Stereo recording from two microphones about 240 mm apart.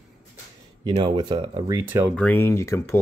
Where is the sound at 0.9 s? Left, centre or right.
Centre.